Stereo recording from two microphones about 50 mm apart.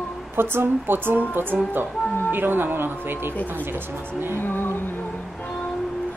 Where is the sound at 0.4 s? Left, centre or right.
Right.